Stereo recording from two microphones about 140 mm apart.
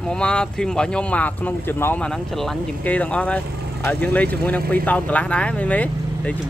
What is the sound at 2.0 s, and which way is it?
Speech, 5° left (ahead or behind).